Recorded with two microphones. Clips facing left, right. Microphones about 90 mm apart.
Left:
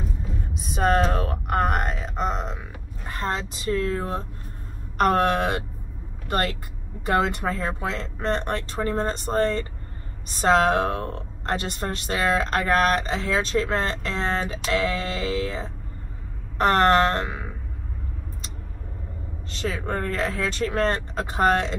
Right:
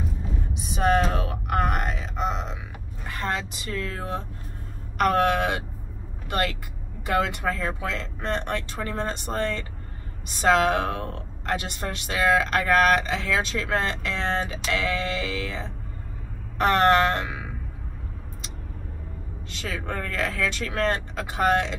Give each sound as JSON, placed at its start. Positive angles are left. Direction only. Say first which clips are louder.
{"t": 0.7, "sound": "a sound", "louder": "left 1 dB", "side_deg": 40}
{"t": 3.1, "sound": "speech", "louder": "left 1 dB", "side_deg": 35}
{"t": 19.5, "sound": "speech", "louder": "left 4 dB", "side_deg": 40}